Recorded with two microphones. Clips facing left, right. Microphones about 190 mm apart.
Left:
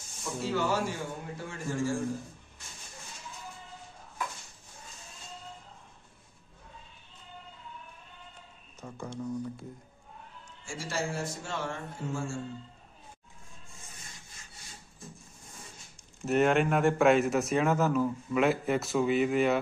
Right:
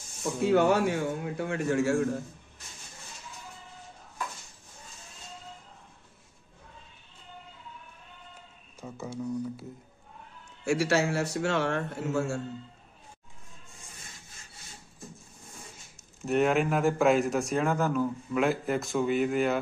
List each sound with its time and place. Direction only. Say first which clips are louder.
0.2 s speech: right 8 dB; 55° right (ahead or behind)
8.8 s speech: right 2 dB; 5° right (ahead or behind)
10.6 s a man's voice: right 10 dB; 70° right (ahead or behind)
16.2 s a man's voice: even; centre (ahead or behind)